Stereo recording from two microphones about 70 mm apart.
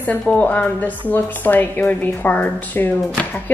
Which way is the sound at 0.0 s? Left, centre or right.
Left.